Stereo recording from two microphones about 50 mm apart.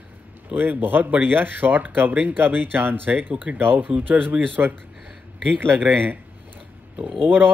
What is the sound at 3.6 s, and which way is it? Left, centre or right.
Speech, right.